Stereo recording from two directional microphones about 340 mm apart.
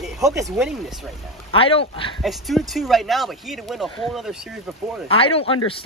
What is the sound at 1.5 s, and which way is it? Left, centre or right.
Speech, centre.